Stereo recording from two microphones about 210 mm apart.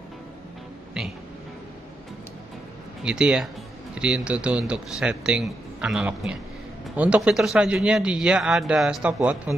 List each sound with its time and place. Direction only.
3.0 s speech: 5° right (ahead or behind)